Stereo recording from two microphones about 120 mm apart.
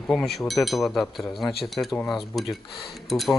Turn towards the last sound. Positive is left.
turn(degrees=0)  # may be behind; listen again after turning